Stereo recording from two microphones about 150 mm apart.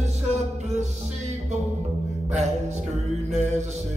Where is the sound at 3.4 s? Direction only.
50° right (ahead or behind).